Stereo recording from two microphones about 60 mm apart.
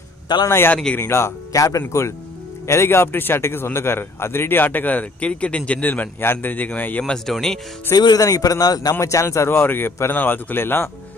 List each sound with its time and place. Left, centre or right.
0.5 s a man's voice: left
7.1 s speech: centre
7.9 s a man's voice: left
9.0 s a man's voice: left